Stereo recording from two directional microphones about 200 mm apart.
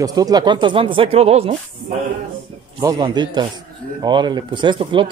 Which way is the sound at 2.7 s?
20° right (ahead or behind).